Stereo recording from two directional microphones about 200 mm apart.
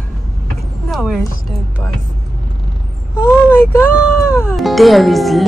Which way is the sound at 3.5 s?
15° left (ahead or behind).